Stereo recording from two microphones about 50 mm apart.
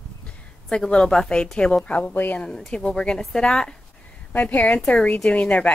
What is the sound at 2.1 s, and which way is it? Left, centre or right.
Speech, left.